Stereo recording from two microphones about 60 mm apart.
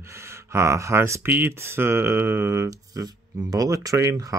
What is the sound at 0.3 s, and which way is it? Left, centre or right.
Speech, right.